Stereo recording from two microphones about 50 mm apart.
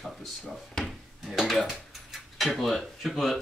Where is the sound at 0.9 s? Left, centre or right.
Centre.